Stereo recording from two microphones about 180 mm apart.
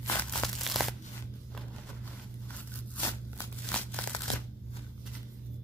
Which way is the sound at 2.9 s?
10° left (ahead or behind).